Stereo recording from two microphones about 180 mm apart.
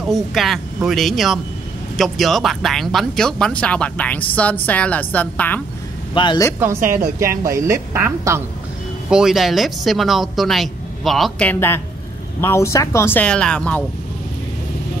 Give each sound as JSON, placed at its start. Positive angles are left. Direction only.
{"t": 0.1, "sound": "speech", "side_deg": 0}
{"t": 6.1, "sound": "a man's voice", "side_deg": 25}
{"t": 7.2, "sound": "speech", "side_deg": -15}
{"t": 9.1, "sound": "speech", "side_deg": 0}